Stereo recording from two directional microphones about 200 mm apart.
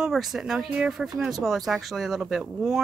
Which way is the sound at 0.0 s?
Centre (ahead or behind).